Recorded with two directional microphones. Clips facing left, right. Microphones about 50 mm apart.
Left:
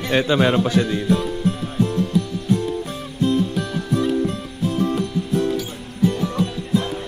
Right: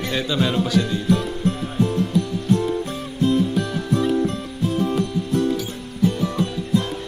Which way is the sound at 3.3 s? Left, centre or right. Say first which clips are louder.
Right 1 dB; centre.